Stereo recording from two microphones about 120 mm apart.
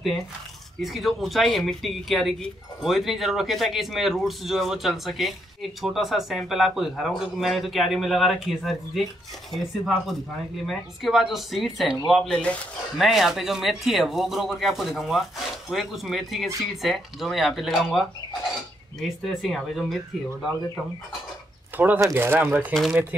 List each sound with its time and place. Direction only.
0.7 s speech: centre (ahead or behind)
21.7 s speech: 15° right (ahead or behind)